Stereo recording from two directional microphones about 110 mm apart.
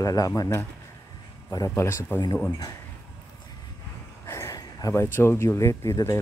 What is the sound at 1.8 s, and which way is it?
Speech, 25° left (ahead or behind).